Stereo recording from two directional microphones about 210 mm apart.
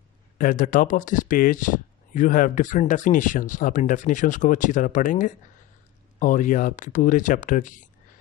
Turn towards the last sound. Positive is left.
turn(degrees=40)  # may be behind; listen again after turning